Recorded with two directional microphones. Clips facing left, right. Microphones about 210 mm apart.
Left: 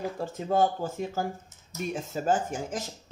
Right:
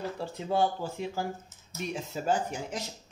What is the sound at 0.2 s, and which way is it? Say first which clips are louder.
Speech: left 3 dB; 45° left (ahead or behind).